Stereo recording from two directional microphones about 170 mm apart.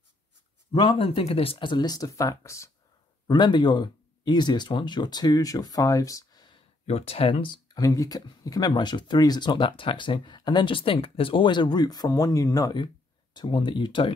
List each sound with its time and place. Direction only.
0.7 s speech: 30° left (ahead or behind)